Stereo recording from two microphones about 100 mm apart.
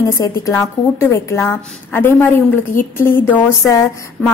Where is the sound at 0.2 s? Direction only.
30° left (ahead or behind).